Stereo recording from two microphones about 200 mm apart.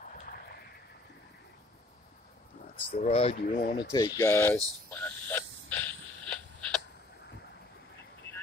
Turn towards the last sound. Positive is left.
turn(degrees=5)  # may be behind; listen again after turning